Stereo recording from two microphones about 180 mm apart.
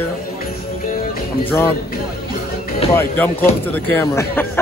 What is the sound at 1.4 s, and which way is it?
Speech, 15° left (ahead or behind).